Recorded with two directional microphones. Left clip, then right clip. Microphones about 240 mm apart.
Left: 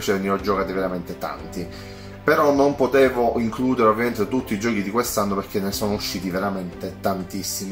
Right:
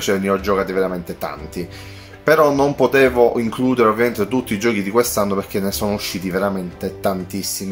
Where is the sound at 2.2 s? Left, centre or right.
Right.